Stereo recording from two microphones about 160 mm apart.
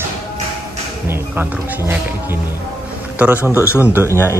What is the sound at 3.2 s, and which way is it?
A man's voice, 10° right (ahead or behind).